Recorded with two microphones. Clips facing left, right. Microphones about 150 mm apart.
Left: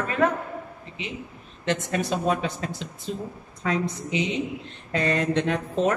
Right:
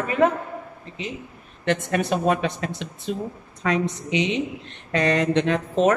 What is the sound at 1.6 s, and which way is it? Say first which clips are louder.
A woman's voice: right 3 dB; 65° right (ahead or behind).